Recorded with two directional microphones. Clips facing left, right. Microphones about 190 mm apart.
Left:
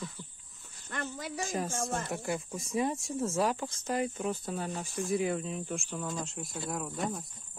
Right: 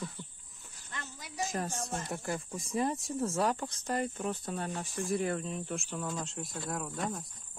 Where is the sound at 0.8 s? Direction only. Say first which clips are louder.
Left 9 dB; 55° left (ahead or behind).